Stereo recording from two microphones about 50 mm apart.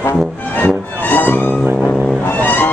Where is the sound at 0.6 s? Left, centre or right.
Left.